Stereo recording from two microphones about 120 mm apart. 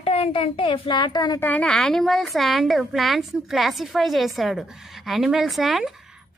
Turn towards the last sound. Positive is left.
turn(degrees=0)  # may be behind; listen again after turning